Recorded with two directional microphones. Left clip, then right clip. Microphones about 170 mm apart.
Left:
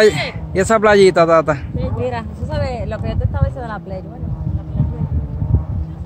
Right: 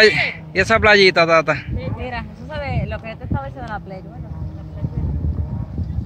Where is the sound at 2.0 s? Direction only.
50° left (ahead or behind).